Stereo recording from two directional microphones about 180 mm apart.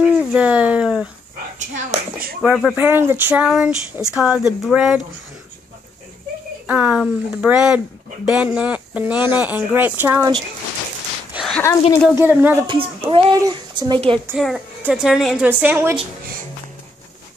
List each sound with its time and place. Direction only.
0.0 s speech: 5° right (ahead or behind)
1.6 s a child's voice: 45° right (ahead or behind)
2.4 s a woman's voice: centre (ahead or behind)
2.7 s a woman's voice: 10° right (ahead or behind)
6.7 s speech: 5° right (ahead or behind)
11.3 s a sound: centre (ahead or behind)
12.2 s speech: 10° right (ahead or behind)
12.6 s speech: 30° right (ahead or behind)
14.4 s a woman's voice: centre (ahead or behind)